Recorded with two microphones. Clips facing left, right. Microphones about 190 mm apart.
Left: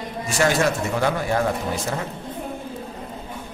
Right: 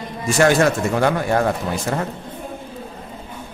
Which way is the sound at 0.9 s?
55° right (ahead or behind).